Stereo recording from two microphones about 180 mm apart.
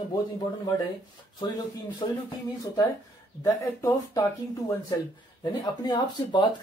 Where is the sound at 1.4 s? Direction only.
25° left (ahead or behind).